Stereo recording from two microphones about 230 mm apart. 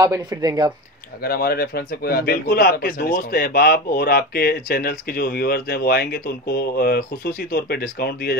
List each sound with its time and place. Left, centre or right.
0.0 s speech: centre
1.2 s speech: left